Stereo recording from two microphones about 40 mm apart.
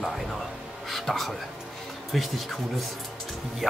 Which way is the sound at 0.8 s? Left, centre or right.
Centre.